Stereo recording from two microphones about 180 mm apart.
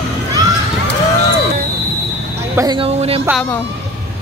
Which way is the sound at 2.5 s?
25° right (ahead or behind).